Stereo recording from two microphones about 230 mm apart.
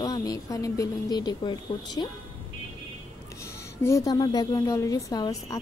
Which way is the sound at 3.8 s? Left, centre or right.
Centre.